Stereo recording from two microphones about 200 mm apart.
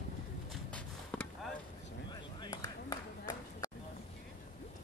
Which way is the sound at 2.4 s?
20° left (ahead or behind).